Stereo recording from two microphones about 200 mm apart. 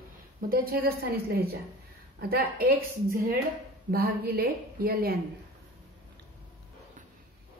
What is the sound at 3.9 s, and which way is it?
A woman's voice, 50° right (ahead or behind).